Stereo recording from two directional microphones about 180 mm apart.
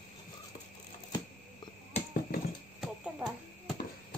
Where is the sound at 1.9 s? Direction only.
50° left (ahead or behind).